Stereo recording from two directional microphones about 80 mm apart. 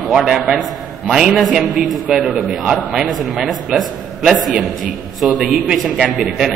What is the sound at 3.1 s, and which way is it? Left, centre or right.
A man's voice, centre.